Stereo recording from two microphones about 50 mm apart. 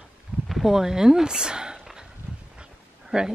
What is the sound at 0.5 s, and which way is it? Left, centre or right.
Speech, centre.